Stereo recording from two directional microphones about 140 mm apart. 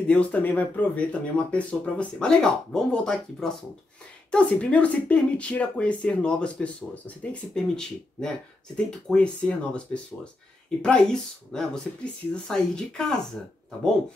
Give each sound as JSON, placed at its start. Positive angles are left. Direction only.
{"t": 0.0, "sound": "speech", "side_deg": 10}